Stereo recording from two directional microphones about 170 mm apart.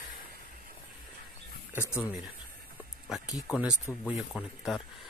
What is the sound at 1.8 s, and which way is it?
Speech, 15° left (ahead or behind).